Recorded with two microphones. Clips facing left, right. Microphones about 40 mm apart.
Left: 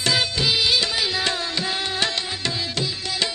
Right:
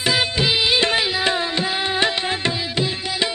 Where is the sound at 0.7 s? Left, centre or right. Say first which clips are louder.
Right 5 dB; right.